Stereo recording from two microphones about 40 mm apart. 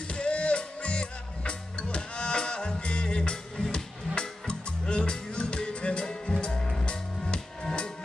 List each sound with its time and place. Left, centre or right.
0.1 s music: left